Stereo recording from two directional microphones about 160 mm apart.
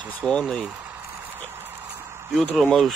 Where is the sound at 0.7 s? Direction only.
15° right (ahead or behind).